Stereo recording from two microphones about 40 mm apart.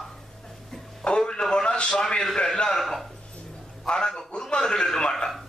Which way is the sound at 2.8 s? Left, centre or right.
Centre.